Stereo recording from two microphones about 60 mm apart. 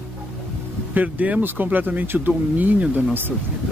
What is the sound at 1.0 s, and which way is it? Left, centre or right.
Speech, right.